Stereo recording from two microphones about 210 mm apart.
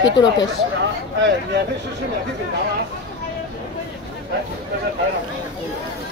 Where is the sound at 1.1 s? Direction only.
60° right (ahead or behind).